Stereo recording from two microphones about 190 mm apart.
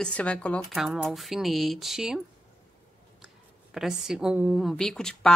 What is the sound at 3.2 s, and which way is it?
Speech, 5° right (ahead or behind).